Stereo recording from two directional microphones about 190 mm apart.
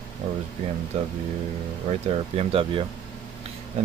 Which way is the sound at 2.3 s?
30° right (ahead or behind).